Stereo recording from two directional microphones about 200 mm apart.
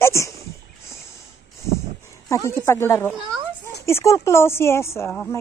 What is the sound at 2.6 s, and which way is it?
Speech, 10° left (ahead or behind).